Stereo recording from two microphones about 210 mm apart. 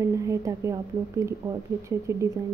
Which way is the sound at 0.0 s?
15° right (ahead or behind).